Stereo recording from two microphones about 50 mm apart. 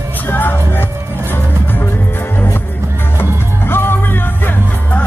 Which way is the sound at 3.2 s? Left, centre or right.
Left.